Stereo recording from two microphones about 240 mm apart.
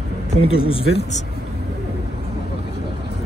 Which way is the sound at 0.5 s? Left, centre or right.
Left.